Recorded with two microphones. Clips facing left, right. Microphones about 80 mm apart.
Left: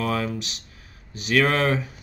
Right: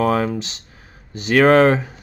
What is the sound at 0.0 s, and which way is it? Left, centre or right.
Speech, right.